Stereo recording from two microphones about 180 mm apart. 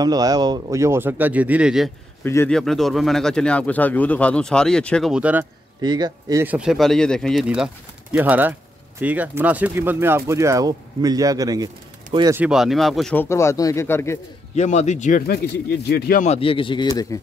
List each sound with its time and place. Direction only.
0.0 s speech: 20° right (ahead or behind); by 1.9 s 5° right (ahead or behind)
2.2 s speech: 10° left (ahead or behind)
2.6 s speech: centre (ahead or behind)
5.8 s speech: 20° right (ahead or behind)
6.4 s speech: 5° right (ahead or behind); by 12.4 s 20° right (ahead or behind)
12.4 s speech: 5° right (ahead or behind); by 14.2 s 15° left (ahead or behind)
14.5 s speech: 40° left (ahead or behind); by 16.2 s 65° left (ahead or behind)
16.2 s speech: 35° left (ahead or behind)